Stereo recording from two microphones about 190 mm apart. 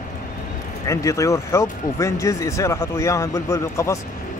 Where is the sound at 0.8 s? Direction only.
15° left (ahead or behind).